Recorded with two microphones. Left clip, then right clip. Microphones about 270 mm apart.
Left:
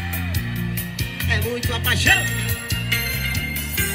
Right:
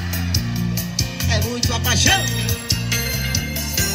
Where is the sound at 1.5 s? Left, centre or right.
Right.